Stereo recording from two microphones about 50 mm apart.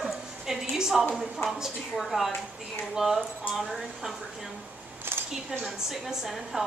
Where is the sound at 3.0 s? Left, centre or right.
Centre.